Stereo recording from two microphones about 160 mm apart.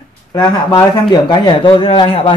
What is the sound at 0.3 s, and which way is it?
Speech, 25° left (ahead or behind).